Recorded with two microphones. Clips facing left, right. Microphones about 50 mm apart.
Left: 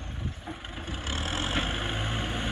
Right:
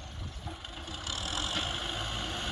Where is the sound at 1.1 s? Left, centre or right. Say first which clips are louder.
Left 4 dB; left.